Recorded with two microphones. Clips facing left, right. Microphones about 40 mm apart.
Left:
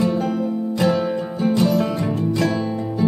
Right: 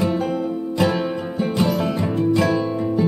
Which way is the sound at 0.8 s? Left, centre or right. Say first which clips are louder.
Left 5 dB; centre.